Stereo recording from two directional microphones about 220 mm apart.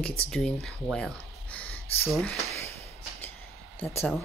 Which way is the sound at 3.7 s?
10° left (ahead or behind).